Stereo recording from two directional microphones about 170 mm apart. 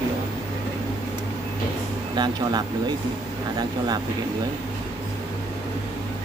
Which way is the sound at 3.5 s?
25° right (ahead or behind).